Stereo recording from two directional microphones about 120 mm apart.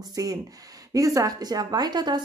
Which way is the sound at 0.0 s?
30° right (ahead or behind).